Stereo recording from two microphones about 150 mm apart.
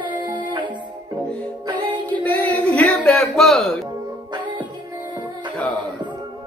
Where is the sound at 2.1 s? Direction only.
10° left (ahead or behind).